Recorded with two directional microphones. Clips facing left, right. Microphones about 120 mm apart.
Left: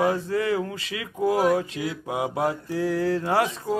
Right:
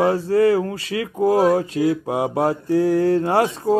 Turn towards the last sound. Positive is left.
turn(degrees=-30)  # may be behind; listen again after turning